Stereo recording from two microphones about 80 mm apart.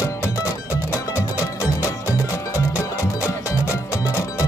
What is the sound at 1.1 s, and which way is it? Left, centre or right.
Music, left.